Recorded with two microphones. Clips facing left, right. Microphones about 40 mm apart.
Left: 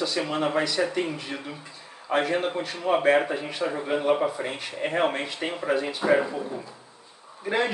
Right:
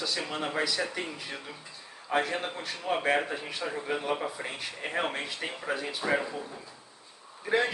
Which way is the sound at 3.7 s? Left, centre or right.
Centre.